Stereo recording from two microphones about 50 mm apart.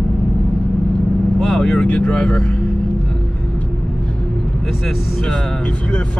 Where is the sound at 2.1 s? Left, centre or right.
Centre.